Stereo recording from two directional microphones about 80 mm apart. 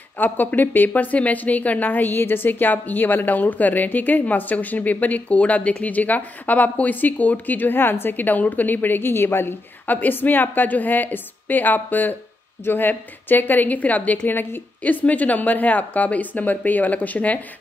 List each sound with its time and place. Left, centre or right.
0.2 s a woman's voice: left